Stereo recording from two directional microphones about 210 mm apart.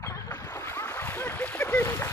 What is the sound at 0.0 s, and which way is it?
Splash, 15° left (ahead or behind).